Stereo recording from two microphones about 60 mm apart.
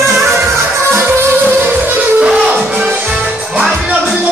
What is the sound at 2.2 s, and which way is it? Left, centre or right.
Music, centre.